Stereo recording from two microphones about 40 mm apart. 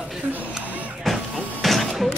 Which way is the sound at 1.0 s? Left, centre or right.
Centre.